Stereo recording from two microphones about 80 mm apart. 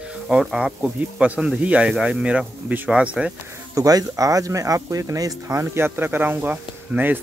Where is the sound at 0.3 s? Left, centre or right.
Centre.